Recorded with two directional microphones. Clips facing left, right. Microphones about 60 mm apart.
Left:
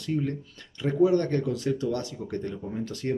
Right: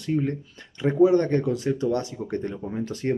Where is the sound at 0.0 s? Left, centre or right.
Right.